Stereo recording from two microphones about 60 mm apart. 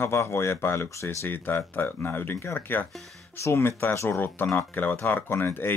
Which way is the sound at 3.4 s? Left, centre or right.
Left.